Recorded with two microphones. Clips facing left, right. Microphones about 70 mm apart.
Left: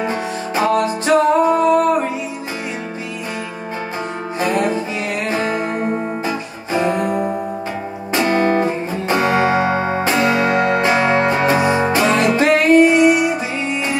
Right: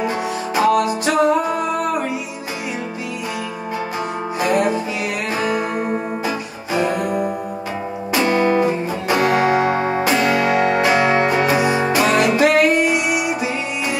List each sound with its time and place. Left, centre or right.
0.6 s music: left
6.7 s music: left
8.1 s music: left